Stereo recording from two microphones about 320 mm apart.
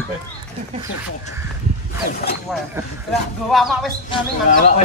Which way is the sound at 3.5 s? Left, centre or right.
Centre.